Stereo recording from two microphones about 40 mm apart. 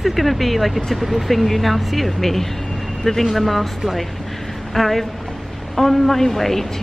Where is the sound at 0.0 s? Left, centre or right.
Centre.